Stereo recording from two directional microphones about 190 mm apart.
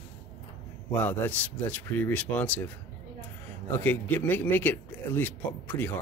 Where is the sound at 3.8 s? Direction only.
10° left (ahead or behind).